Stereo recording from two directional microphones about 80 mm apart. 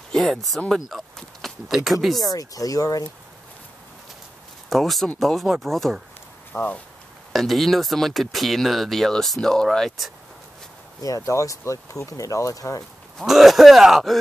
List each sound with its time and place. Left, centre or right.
0.1 s speech: centre
0.7 s a sound: centre
1.9 s speech: centre
2.1 s speech: left
4.6 s speech: centre
6.5 s speech: centre
7.3 s speech: centre
11.0 s speech: left
13.2 s speech: centre